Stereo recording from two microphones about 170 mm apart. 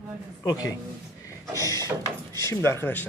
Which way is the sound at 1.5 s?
20° left (ahead or behind).